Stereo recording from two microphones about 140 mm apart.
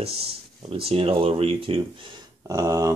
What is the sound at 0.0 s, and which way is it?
Speech, 45° right (ahead or behind).